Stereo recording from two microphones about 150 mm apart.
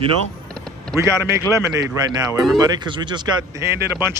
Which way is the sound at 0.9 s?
20° right (ahead or behind).